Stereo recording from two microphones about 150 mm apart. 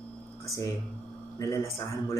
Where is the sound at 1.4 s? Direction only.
20° left (ahead or behind).